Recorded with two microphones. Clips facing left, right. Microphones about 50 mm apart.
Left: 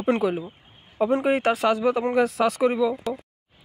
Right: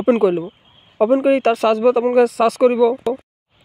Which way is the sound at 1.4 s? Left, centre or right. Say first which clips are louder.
Right 6 dB; right.